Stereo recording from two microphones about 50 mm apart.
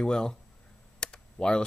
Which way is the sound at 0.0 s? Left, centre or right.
Centre.